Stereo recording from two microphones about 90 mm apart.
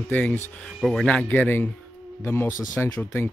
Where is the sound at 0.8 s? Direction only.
5° left (ahead or behind).